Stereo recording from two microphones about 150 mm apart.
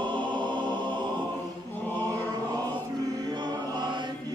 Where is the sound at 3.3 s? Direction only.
30° right (ahead or behind).